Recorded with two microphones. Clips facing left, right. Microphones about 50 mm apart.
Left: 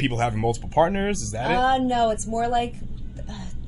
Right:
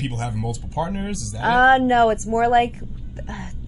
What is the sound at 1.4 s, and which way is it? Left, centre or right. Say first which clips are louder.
A woman's voice: right 6 dB; right.